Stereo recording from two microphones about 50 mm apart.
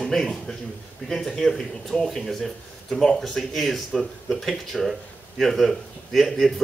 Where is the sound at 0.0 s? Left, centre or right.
Centre.